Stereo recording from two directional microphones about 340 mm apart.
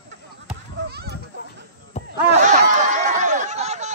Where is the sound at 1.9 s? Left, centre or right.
Centre.